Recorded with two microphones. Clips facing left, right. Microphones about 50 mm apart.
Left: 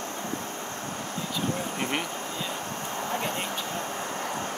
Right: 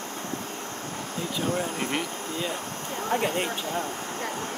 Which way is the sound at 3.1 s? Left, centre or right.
Right.